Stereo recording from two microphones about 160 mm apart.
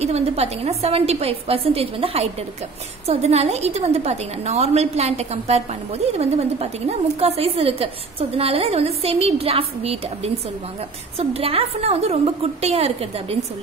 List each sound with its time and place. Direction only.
0.0 s a woman's voice: 45° right (ahead or behind)